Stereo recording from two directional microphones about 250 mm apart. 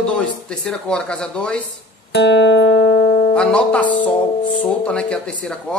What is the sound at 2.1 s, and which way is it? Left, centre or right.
Music, left.